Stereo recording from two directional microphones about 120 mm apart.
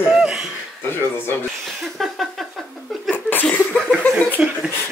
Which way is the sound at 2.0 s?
Centre (ahead or behind).